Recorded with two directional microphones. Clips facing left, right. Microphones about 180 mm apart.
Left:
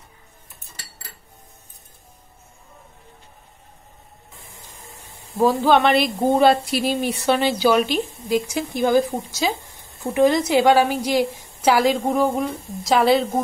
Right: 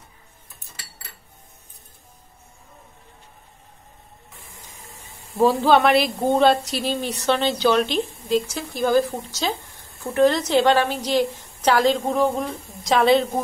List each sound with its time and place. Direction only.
5.4 s a woman's voice: centre (ahead or behind)
9.9 s a sound: 20° left (ahead or behind)
10.2 s a woman's voice: 10° left (ahead or behind)